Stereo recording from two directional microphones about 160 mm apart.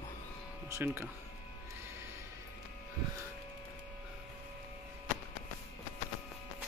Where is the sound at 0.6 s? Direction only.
15° right (ahead or behind).